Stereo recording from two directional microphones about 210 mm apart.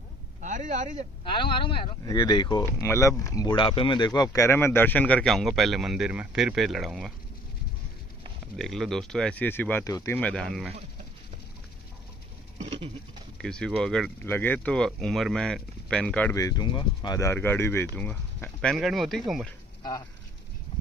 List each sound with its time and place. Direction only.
0.4 s a man's voice: 35° right (ahead or behind)
1.2 s speech: 25° left (ahead or behind); by 7.2 s centre (ahead or behind)
8.5 s speech: centre (ahead or behind)
13.4 s speech: 5° left (ahead or behind)